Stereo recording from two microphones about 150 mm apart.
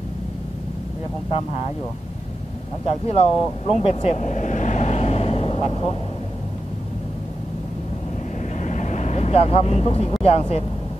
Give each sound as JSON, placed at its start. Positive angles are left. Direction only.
{"t": 2.9, "sound": "speech", "side_deg": 40}
{"t": 8.5, "sound": "vehicle", "side_deg": 55}
{"t": 10.2, "sound": "speech", "side_deg": 40}